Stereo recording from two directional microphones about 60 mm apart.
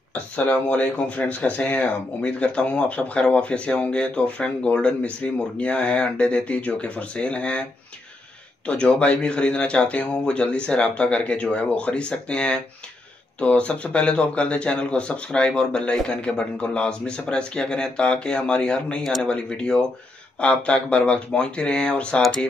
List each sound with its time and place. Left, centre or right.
0.7 s speech: left
8.6 s a man's voice: centre